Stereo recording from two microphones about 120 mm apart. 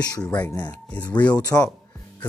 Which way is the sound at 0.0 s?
30° left (ahead or behind).